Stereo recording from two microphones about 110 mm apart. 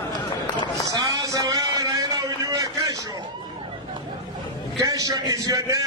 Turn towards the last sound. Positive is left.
turn(degrees=-30)  # may be behind; listen again after turning